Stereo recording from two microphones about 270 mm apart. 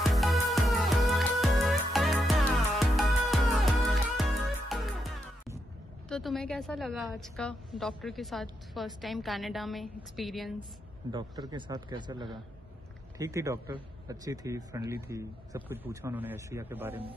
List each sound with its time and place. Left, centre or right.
0.0 s music: centre
6.0 s a woman's voice: centre
11.1 s a man's voice: centre